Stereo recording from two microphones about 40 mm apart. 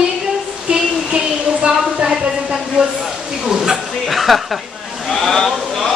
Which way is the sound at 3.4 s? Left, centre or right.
Centre.